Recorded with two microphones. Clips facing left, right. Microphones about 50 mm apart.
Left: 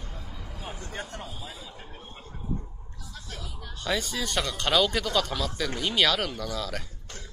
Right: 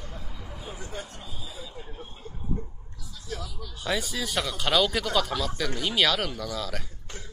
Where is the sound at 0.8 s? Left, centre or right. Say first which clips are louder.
Left 2 dB; left.